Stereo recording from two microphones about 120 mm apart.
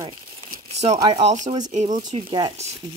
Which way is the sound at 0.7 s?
65° right (ahead or behind).